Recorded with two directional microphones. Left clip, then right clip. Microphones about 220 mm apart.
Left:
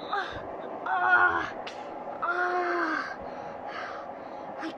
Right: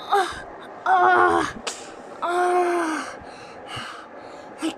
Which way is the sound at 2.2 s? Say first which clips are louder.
Right 7 dB; 15° right (ahead or behind).